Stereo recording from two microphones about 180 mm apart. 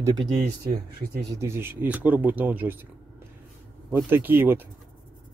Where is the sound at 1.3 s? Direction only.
15° right (ahead or behind).